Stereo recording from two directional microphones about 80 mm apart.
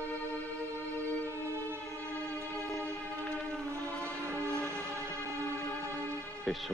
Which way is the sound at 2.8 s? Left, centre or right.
Right.